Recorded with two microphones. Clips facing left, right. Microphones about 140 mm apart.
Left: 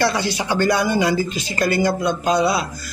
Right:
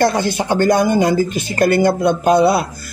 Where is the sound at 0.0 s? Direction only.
50° right (ahead or behind).